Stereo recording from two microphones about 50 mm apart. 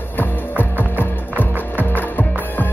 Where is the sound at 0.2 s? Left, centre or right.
Left.